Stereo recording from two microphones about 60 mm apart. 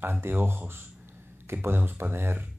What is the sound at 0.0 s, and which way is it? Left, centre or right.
Speech, right.